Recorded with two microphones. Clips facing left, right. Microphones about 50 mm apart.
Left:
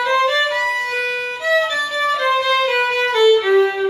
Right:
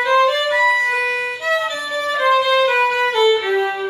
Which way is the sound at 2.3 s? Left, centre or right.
Right.